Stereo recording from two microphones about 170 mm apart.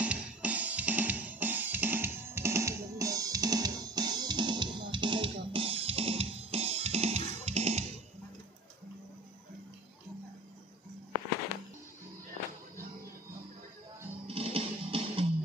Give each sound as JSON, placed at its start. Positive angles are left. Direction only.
{"t": 0.0, "sound": "music", "side_deg": -10}
{"t": 14.2, "sound": "music", "side_deg": -35}